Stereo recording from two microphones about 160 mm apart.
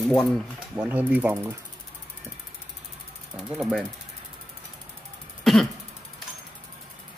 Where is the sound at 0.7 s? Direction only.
10° right (ahead or behind).